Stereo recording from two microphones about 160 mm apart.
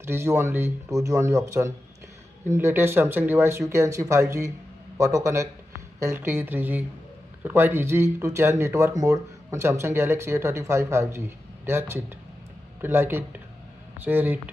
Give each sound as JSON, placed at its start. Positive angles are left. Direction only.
{"t": 0.0, "sound": "a man's voice", "side_deg": -15}